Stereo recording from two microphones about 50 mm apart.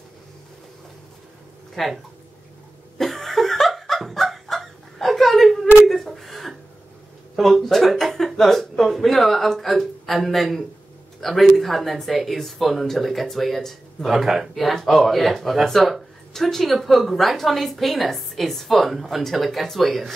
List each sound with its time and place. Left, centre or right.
1.8 s speech: centre
3.0 s laughter: centre
5.9 s a sound: centre
7.3 s speech: centre
14.1 s speech: centre
14.5 s speech: centre